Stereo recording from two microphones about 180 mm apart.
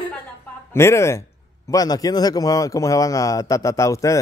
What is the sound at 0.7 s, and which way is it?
Speech, 15° left (ahead or behind).